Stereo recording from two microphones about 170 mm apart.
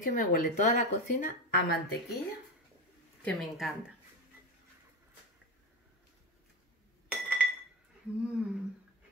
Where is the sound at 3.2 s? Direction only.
5° left (ahead or behind).